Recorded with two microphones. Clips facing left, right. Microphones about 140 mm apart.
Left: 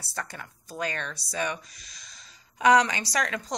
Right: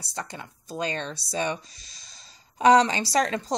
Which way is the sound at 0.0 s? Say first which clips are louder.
Right 1 dB; 20° right (ahead or behind).